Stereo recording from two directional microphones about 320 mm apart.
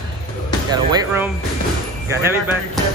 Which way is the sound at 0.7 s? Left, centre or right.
Centre.